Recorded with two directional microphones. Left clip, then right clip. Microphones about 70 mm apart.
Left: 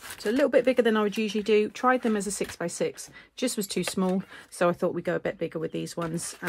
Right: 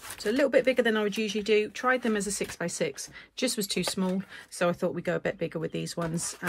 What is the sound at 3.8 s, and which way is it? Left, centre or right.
Speech, left.